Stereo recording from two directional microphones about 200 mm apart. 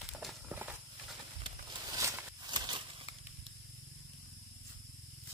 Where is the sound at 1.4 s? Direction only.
20° right (ahead or behind).